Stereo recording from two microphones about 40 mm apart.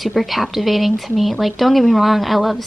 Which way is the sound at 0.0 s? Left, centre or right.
Centre.